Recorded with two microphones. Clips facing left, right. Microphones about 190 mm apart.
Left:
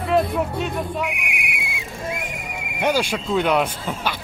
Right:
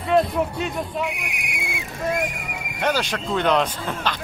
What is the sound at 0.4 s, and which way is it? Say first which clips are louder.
Speech: left 1 dB; centre (ahead or behind).